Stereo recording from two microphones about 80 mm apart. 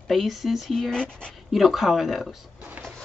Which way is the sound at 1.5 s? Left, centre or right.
Centre.